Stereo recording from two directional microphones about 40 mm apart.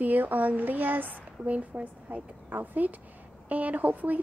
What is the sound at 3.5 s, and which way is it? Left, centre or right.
Speech, right.